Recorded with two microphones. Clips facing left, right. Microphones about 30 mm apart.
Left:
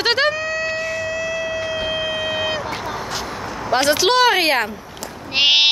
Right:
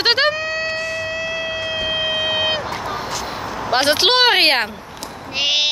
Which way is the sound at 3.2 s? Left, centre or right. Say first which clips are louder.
Right 1 dB; right.